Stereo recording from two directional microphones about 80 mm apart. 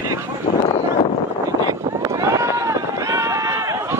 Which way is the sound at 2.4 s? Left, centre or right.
Right.